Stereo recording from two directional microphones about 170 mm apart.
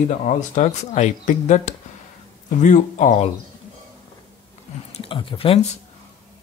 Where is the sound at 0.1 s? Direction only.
45° left (ahead or behind).